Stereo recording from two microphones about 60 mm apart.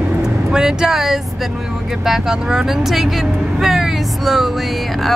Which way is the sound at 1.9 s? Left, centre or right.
Centre.